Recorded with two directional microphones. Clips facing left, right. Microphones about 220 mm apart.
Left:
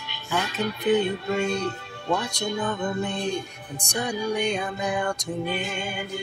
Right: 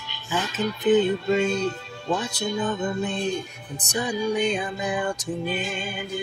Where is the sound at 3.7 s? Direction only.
5° right (ahead or behind).